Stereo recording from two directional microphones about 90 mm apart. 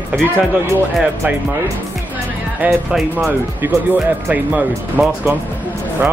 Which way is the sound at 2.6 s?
20° right (ahead or behind).